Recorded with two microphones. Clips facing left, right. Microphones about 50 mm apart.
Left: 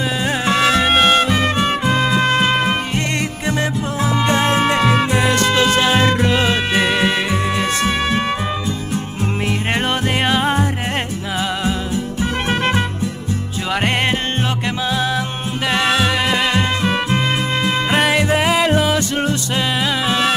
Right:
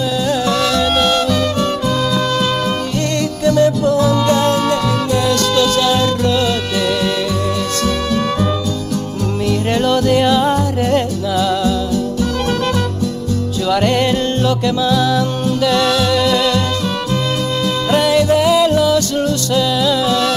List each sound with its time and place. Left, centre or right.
0.3 s music: left
9.5 s music: left